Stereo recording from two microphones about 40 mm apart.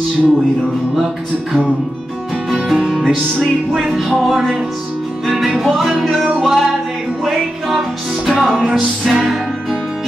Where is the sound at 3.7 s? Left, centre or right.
Centre.